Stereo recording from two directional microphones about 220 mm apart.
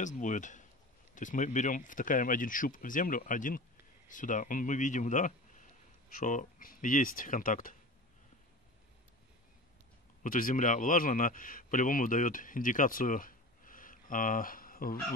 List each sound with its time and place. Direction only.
0.0 s speech: 35° left (ahead or behind)
10.2 s a man's voice: 40° left (ahead or behind)